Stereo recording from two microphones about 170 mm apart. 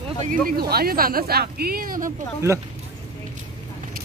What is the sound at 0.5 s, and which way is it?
Speech, 65° right (ahead or behind).